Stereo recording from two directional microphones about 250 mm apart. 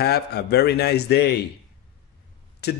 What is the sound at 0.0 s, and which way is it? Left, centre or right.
A man's voice, left.